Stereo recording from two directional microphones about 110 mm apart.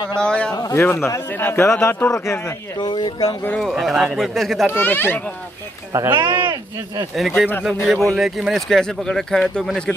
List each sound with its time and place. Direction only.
0.2 s speech: 10° left (ahead or behind)
0.5 s a sound: 35° left (ahead or behind)
0.7 s a man's voice: 20° left (ahead or behind)
2.8 s speech: 40° left (ahead or behind)
3.5 s speech: centre (ahead or behind)
4.7 s speech: 20° left (ahead or behind)
6.0 s speech: 45° right (ahead or behind)
7.2 s speech: centre (ahead or behind)